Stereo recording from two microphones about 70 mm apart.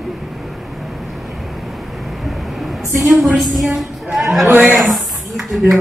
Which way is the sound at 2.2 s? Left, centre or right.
Centre.